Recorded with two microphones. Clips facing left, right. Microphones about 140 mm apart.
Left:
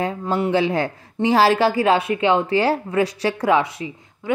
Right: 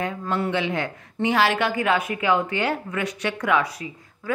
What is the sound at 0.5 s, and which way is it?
A woman's voice, 35° left (ahead or behind).